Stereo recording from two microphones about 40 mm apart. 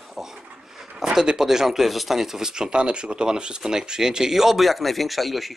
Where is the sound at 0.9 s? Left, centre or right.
Centre.